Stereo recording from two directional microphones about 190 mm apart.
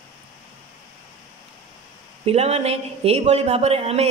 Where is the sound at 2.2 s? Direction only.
35° right (ahead or behind).